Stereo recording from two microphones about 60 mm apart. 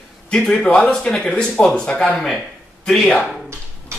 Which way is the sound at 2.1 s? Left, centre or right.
Centre.